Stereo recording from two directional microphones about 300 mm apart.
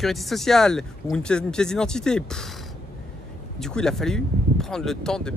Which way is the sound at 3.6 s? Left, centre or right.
Centre.